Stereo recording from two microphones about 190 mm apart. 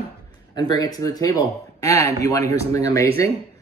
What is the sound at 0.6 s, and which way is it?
Speech, 20° left (ahead or behind).